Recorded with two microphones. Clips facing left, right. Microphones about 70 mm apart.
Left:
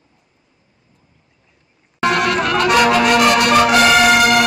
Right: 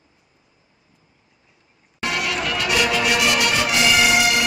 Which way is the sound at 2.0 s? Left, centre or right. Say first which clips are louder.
Left 8 dB; left.